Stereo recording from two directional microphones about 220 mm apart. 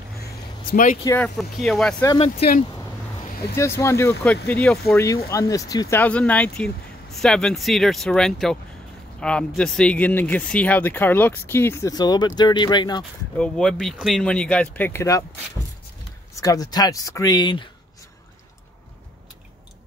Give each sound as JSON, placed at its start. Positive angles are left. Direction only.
{"t": 0.7, "sound": "speech", "side_deg": 35}
{"t": 1.0, "sound": "speech", "side_deg": 5}
{"t": 2.0, "sound": "speech", "side_deg": 25}
{"t": 3.5, "sound": "speech", "side_deg": 10}
{"t": 13.4, "sound": "speech", "side_deg": 5}
{"t": 16.3, "sound": "speech", "side_deg": 15}